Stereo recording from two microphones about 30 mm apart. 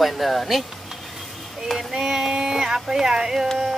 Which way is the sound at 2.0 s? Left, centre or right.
Centre.